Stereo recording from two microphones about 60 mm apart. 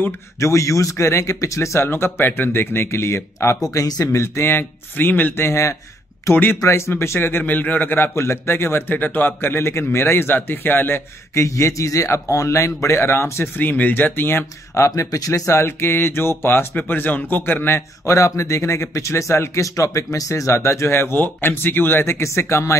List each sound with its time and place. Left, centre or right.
0.4 s a man's voice: left
3.7 s a man's voice: left
6.3 s a man's voice: left
11.3 s speech: left
13.6 s a man's voice: left
15.0 s speech: left
15.5 s a man's voice: left
18.0 s speech: left
19.6 s a man's voice: left